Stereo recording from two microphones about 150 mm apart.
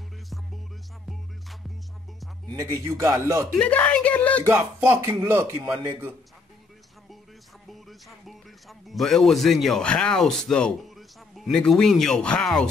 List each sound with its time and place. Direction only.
2.4 s speech: 20° right (ahead or behind)
3.5 s speech: 10° left (ahead or behind)
4.5 s speech: 15° right (ahead or behind)
8.3 s speech: centre (ahead or behind)